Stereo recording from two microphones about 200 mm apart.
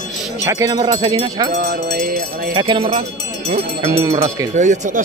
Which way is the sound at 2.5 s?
25° right (ahead or behind).